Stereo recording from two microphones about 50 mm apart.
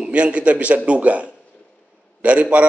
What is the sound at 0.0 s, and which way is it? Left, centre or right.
A man's voice, right.